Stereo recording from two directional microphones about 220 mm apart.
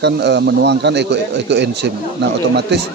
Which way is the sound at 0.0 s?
50° right (ahead or behind).